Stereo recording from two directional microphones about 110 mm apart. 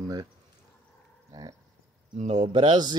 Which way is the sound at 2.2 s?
90° right.